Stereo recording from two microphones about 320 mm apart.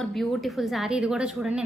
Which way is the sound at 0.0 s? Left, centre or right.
Centre.